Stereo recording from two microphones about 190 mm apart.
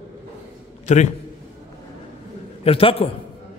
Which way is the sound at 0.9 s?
40° left (ahead or behind).